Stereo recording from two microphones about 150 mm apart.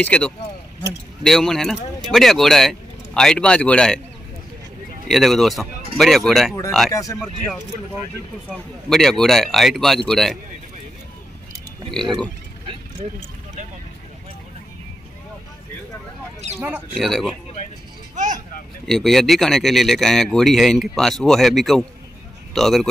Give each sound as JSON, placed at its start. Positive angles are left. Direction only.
{"t": 0.0, "sound": "speech", "side_deg": 10}
{"t": 5.0, "sound": "speech", "side_deg": 0}
{"t": 6.9, "sound": "speech", "side_deg": 20}
{"t": 8.5, "sound": "speech", "side_deg": 5}
{"t": 11.9, "sound": "speech", "side_deg": 0}
{"t": 16.5, "sound": "speech", "side_deg": -15}
{"t": 17.0, "sound": "speech", "side_deg": 0}
{"t": 18.1, "sound": "vehicle", "side_deg": -55}
{"t": 18.9, "sound": "a man's voice", "side_deg": 0}